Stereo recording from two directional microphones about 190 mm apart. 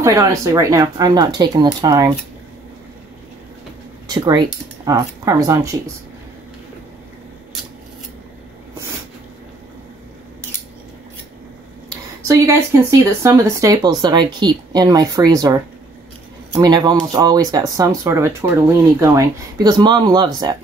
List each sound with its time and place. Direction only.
0.0 s speech: 15° right (ahead or behind)
4.1 s speech: 20° right (ahead or behind)
11.9 s speech: 15° right (ahead or behind)